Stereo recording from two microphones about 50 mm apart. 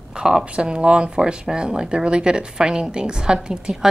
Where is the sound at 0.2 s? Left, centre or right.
Centre.